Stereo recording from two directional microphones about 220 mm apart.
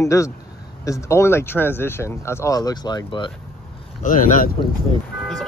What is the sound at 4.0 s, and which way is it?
Speech, 35° left (ahead or behind).